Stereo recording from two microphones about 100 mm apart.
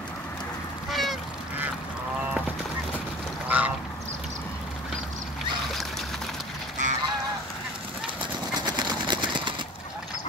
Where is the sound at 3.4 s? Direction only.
15° right (ahead or behind).